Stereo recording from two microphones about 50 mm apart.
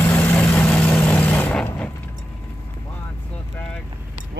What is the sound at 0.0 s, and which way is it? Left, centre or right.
Vehicle, left.